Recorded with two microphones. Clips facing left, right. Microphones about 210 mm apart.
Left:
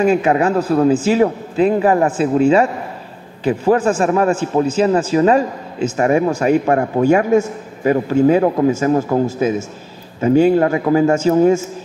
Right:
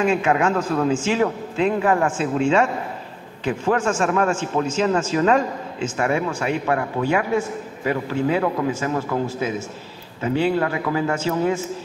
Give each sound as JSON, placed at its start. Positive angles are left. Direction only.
{"t": 0.0, "sound": "a man's voice", "side_deg": 35}